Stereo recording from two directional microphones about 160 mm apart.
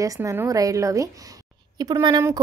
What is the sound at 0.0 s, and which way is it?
Speech, 20° right (ahead or behind).